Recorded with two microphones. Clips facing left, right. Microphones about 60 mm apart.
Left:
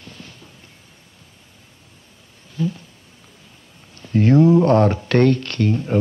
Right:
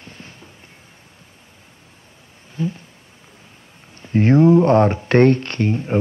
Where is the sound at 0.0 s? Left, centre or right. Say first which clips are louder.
Even; right.